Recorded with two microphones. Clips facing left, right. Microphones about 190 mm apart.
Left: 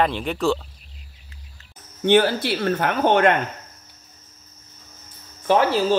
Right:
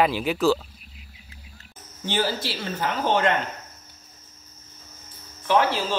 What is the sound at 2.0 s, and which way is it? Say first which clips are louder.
Speech: left 9 dB; 60° left (ahead or behind).